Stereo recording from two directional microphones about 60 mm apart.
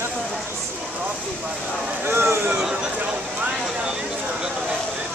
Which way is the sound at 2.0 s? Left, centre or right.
Right.